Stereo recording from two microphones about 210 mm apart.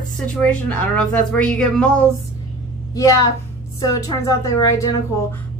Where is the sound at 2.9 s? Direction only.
15° left (ahead or behind).